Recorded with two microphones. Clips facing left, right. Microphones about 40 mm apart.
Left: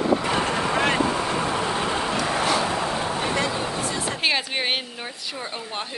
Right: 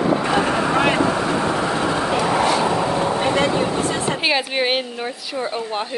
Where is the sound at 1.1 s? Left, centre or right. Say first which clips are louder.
Right 4 dB; right.